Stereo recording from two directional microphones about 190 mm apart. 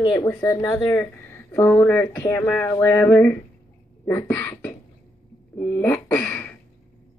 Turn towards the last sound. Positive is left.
turn(degrees=10)  # may be behind; listen again after turning